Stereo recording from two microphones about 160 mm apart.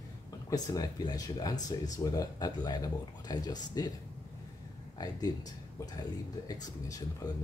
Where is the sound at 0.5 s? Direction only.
25° left (ahead or behind).